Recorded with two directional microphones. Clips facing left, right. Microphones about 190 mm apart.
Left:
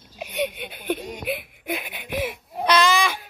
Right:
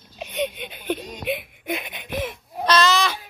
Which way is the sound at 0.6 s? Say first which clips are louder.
Even; 10° left (ahead or behind).